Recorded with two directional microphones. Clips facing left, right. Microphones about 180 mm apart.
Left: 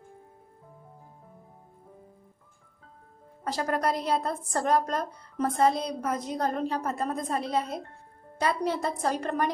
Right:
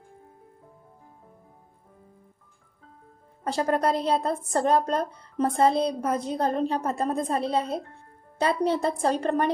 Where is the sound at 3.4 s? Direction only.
30° right (ahead or behind).